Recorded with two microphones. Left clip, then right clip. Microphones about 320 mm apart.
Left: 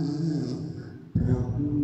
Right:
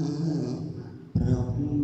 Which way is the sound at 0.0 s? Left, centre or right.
Centre.